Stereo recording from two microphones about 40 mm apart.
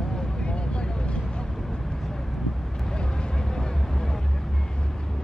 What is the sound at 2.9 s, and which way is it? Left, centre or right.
Vehicle, left.